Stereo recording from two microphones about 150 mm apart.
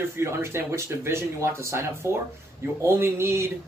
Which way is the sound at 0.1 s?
15° right (ahead or behind).